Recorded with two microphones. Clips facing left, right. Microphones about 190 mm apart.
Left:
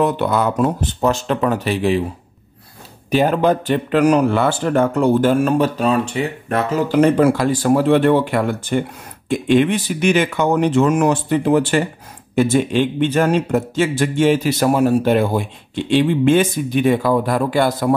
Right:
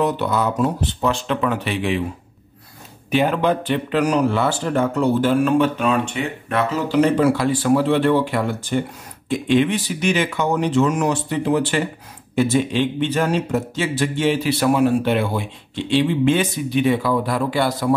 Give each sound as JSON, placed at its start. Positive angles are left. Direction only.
{"t": 0.0, "sound": "speech", "side_deg": 55}
{"t": 3.1, "sound": "speech", "side_deg": 40}